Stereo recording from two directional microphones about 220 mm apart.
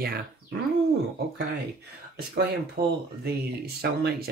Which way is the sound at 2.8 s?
40° right (ahead or behind).